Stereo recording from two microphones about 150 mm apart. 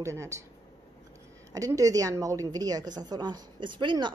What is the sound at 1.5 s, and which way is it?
A woman's voice, 20° right (ahead or behind).